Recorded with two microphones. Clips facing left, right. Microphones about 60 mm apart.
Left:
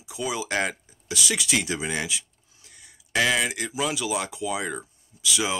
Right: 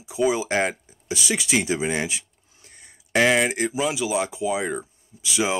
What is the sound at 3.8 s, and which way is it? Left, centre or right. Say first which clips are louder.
Speech: right 1 dB; centre.